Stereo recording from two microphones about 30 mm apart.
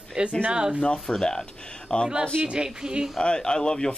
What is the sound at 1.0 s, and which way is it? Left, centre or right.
Speech, left.